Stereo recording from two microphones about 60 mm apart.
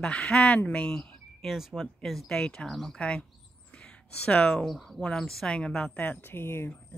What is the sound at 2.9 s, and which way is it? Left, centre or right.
Speech, centre.